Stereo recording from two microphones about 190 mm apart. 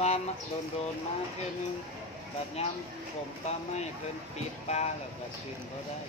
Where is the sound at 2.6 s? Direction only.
35° left (ahead or behind).